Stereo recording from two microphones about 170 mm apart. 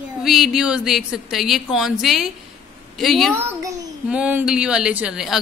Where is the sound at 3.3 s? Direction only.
20° right (ahead or behind).